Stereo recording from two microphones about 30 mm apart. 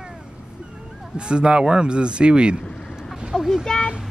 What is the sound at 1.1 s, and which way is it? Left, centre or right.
Speech, right.